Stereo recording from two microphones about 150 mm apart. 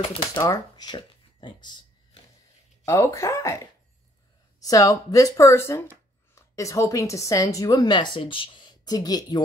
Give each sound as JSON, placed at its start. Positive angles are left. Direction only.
{"t": 0.4, "sound": "speech", "side_deg": 25}
{"t": 2.8, "sound": "speech", "side_deg": 20}
{"t": 4.6, "sound": "speech", "side_deg": 25}